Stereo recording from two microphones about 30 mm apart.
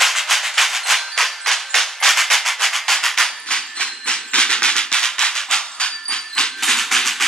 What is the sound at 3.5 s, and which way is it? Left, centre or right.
Train, left.